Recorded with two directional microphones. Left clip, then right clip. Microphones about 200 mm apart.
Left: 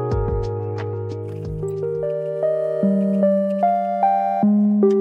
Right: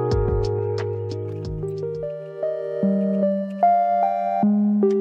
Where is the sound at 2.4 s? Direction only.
30° right (ahead or behind).